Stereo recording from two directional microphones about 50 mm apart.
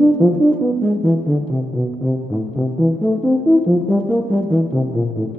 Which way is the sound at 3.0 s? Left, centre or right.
Left.